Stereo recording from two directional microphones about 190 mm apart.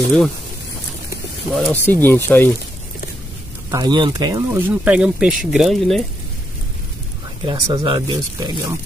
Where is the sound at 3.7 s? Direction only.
20° right (ahead or behind); by 6.0 s centre (ahead or behind).